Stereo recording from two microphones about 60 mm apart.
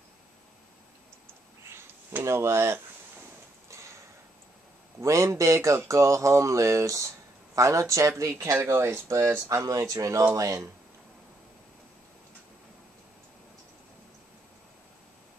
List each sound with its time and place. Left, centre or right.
2.2 s speech: right
3.7 s a sound: right
5.0 s speech: right
8.5 s speech: right
9.5 s speech: right